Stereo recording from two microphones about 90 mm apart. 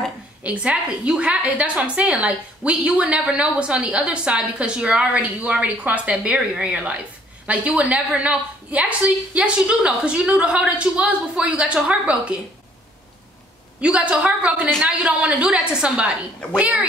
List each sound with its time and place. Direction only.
0.4 s a woman's voice: 15° right (ahead or behind)
13.7 s a woman's voice: 15° right (ahead or behind)
16.4 s a woman's voice: 10° left (ahead or behind)